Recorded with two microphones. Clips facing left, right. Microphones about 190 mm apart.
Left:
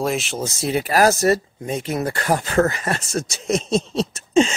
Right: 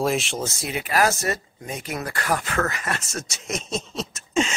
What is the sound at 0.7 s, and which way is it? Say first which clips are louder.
Speech: left 6 dB; 35° left (ahead or behind).